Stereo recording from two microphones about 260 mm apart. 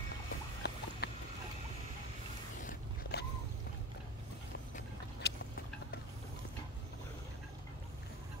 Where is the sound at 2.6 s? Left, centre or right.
Left.